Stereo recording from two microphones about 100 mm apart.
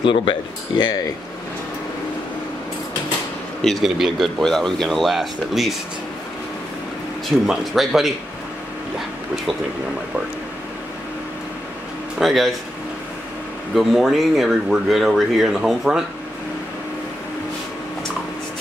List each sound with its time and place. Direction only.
0.0 s speech: 60° left (ahead or behind)
3.6 s speech: centre (ahead or behind)
7.2 s speech: centre (ahead or behind)
12.2 s speech: centre (ahead or behind)
13.7 s speech: centre (ahead or behind)